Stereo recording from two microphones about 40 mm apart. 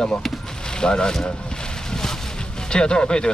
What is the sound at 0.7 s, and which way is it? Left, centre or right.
Speech, left.